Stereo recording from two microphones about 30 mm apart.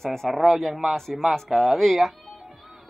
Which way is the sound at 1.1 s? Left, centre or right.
Centre.